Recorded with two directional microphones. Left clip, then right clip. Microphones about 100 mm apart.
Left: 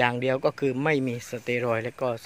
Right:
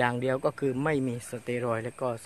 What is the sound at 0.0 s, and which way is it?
A man's voice, 15° left (ahead or behind).